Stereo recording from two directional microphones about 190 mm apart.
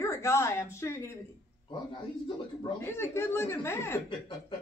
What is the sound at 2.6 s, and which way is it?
Speech, 25° left (ahead or behind).